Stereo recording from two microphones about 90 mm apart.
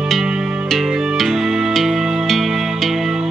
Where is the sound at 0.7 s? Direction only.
Centre (ahead or behind).